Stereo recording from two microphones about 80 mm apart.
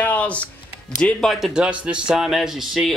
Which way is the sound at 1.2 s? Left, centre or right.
Centre.